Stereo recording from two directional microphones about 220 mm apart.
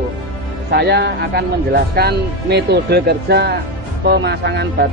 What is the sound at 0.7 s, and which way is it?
Speech, 50° right (ahead or behind).